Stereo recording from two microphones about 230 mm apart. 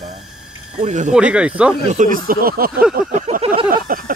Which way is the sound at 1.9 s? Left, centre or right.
Right.